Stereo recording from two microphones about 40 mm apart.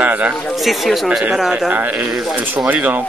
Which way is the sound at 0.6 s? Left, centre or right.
Centre.